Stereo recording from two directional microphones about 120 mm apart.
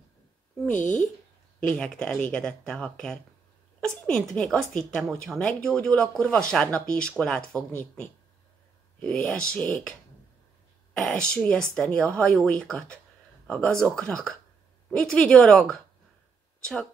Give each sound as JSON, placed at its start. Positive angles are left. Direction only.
{"t": 0.7, "sound": "speech", "side_deg": 90}
{"t": 1.7, "sound": "a woman's voice", "side_deg": 5}